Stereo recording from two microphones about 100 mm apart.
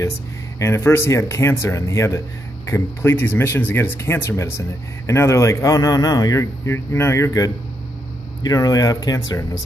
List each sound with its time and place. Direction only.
0.6 s speech: 30° left (ahead or behind)